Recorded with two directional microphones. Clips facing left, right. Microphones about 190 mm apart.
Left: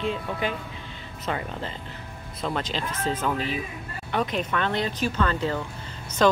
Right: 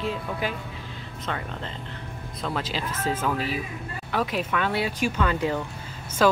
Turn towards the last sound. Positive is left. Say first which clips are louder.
# even
turn(degrees=-5)  # may be behind; listen again after turning